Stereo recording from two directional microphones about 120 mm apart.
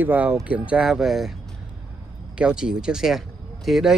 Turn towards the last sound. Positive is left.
turn(degrees=0)  # may be behind; listen again after turning